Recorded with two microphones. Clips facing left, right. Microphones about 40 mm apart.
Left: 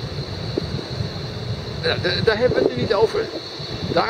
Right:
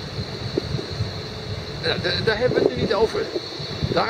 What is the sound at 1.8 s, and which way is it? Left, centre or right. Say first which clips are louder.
Speech: left 2 dB; centre.